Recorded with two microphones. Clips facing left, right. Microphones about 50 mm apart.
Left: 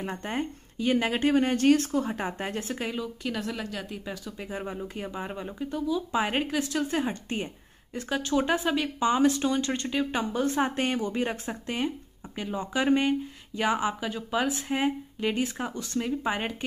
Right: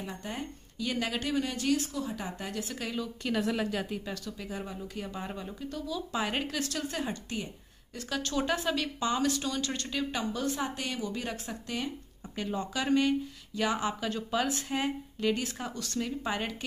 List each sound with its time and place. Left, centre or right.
0.0 s a woman's voice: left
3.3 s speech: centre
4.0 s speech: centre
4.4 s speech: left
12.4 s speech: centre
12.7 s speech: left